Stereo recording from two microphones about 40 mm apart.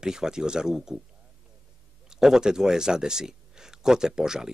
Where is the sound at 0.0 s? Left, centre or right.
Centre.